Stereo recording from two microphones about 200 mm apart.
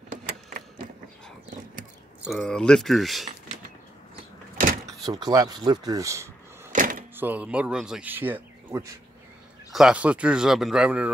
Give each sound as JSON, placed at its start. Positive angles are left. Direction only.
{"t": 2.2, "sound": "speech", "side_deg": 5}
{"t": 5.0, "sound": "speech", "side_deg": -20}
{"t": 6.7, "sound": "a sound", "side_deg": -45}
{"t": 7.2, "sound": "speech", "side_deg": -10}